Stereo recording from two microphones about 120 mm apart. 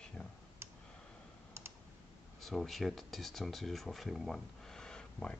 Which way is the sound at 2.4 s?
Centre (ahead or behind).